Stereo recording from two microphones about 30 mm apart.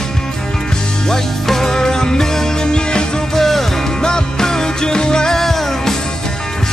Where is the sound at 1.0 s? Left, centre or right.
Centre.